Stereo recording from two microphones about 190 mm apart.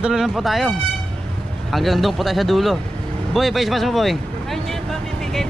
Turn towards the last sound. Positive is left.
turn(degrees=0)  # may be behind; listen again after turning